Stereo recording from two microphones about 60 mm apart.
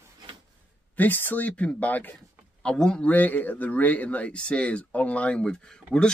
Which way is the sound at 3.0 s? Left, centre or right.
Left.